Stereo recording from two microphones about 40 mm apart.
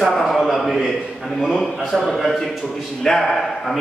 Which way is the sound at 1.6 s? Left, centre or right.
Centre.